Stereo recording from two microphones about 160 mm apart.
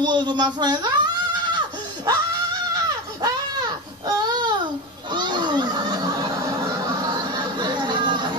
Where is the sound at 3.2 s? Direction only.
25° right (ahead or behind).